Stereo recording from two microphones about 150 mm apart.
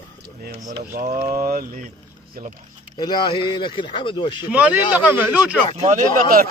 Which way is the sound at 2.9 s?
30° left (ahead or behind).